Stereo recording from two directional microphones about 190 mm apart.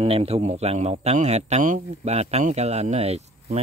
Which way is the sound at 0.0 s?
30° right (ahead or behind).